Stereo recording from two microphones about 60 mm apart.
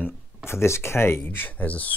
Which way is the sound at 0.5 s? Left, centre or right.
Left.